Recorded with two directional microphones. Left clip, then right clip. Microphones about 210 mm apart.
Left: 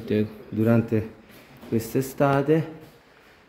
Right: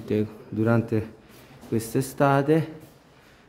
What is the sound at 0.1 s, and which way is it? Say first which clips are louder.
A man's voice: left 1 dB; 5° right (ahead or behind).